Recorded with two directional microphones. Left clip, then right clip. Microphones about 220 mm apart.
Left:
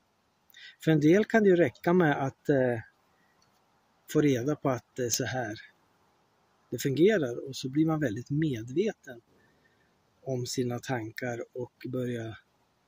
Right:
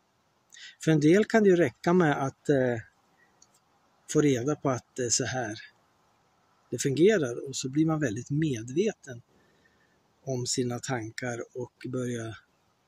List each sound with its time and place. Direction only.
0.5 s speech: 5° left (ahead or behind)
4.1 s speech: 5° left (ahead or behind)
6.7 s speech: 10° left (ahead or behind)
10.2 s speech: 5° left (ahead or behind)